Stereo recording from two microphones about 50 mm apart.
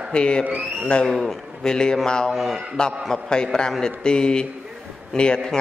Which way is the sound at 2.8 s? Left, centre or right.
Centre.